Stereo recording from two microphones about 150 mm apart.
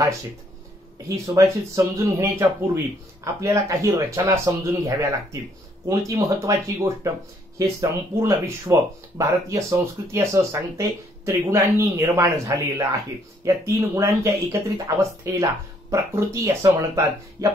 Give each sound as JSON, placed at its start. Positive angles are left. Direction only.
{"t": 1.0, "sound": "speech", "side_deg": -20}